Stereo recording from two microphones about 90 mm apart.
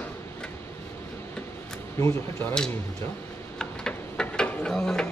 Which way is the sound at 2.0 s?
30° left (ahead or behind).